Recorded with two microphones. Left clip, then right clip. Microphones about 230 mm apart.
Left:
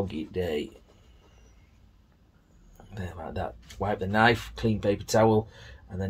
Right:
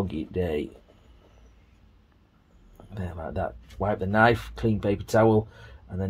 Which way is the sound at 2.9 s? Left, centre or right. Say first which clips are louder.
Right 3 dB; right.